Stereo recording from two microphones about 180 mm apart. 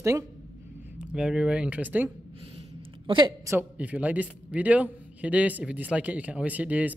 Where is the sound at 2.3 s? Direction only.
35° right (ahead or behind).